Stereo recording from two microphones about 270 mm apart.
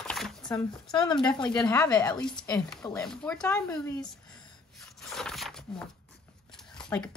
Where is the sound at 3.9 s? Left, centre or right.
Centre.